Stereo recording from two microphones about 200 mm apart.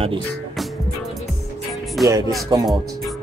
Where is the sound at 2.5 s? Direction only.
20° right (ahead or behind).